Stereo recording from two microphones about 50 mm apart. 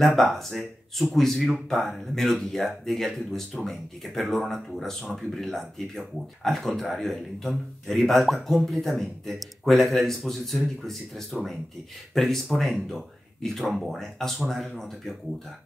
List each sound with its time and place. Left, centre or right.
0.0 s speech: centre